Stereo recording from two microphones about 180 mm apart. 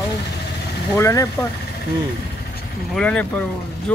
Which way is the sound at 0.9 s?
15° left (ahead or behind).